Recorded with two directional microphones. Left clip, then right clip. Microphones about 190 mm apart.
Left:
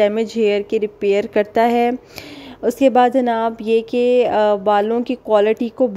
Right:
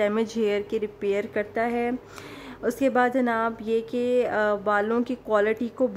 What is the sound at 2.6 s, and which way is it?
Speech, 25° left (ahead or behind).